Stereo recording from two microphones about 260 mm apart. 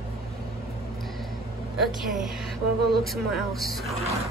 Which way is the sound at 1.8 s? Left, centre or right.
Centre.